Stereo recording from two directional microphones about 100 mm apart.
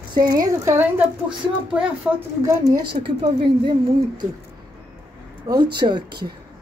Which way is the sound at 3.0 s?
60° right (ahead or behind).